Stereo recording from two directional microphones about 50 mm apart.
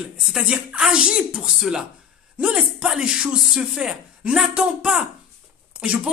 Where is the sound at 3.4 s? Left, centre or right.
Centre.